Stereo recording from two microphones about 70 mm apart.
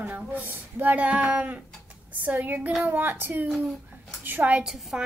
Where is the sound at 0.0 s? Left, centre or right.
Right.